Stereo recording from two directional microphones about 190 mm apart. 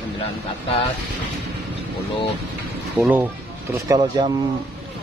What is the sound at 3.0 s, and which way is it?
A man's voice, 10° right (ahead or behind).